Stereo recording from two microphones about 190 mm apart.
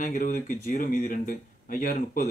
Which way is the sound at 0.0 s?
45° left (ahead or behind).